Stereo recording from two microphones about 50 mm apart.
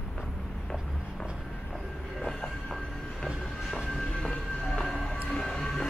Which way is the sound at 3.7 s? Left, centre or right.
Centre.